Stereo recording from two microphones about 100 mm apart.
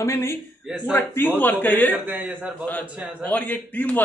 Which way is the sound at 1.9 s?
20° right (ahead or behind).